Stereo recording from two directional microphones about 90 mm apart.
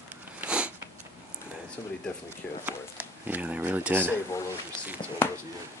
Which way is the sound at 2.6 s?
20° right (ahead or behind).